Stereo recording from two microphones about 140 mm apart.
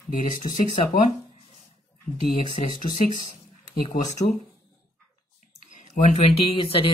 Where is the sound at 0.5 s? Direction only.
55° left (ahead or behind).